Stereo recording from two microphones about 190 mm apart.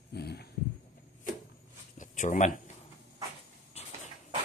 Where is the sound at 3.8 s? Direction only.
35° left (ahead or behind).